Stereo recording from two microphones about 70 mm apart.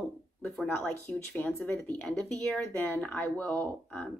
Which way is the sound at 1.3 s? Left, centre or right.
Left.